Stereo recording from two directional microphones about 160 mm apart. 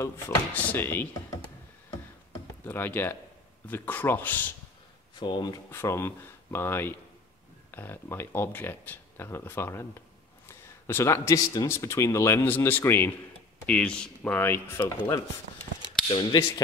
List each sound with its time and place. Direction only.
0.6 s speech: 10° left (ahead or behind)
2.6 s speech: 15° left (ahead or behind)
5.2 s speech: 30° left (ahead or behind)
5.7 s speech: 15° left (ahead or behind)
16.1 s speech: 30° left (ahead or behind)